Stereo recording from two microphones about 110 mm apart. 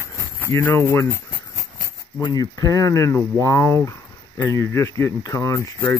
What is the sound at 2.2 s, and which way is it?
Speech, 35° left (ahead or behind).